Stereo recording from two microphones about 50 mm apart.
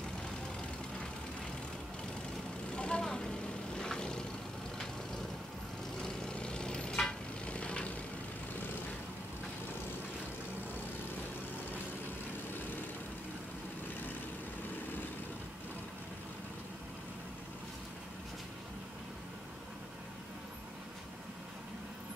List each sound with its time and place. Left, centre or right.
2.7 s vehicle: left
5.9 s vehicle: centre